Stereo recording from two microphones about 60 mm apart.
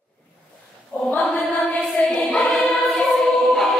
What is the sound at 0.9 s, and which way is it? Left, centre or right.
Choir, left.